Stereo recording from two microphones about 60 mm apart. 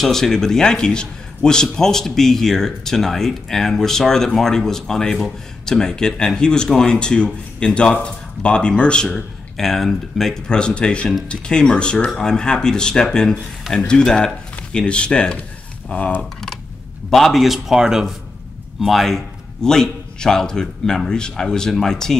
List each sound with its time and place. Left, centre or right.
0.0 s a man's voice: centre; by 16.3 s left
17.1 s a man's voice: centre